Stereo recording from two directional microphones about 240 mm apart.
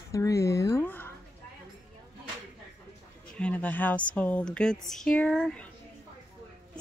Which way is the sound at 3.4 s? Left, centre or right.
Centre.